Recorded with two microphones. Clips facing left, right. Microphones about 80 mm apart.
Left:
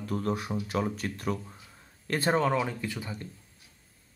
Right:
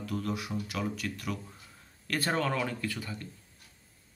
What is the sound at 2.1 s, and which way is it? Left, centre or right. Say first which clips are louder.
Speech: left 4 dB; left.